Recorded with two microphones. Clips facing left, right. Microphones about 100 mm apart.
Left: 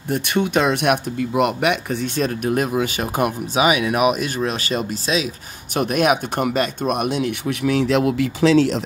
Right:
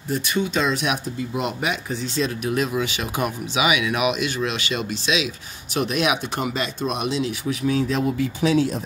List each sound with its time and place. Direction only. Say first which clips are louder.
0.1 s speech: left 4 dB; 60° left (ahead or behind); by 8.8 s 80° left